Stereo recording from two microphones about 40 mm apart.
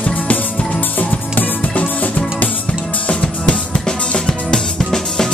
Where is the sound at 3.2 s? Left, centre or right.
Centre.